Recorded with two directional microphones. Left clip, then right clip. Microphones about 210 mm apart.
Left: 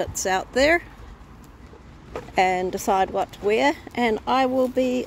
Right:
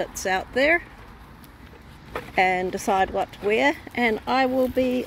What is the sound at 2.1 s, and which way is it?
Speech, 5° left (ahead or behind).